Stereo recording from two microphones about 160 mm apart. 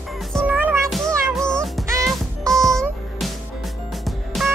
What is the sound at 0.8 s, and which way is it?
Music, centre (ahead or behind).